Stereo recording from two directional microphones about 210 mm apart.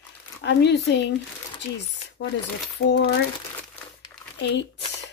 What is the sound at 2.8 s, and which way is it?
Speech, 50° left (ahead or behind).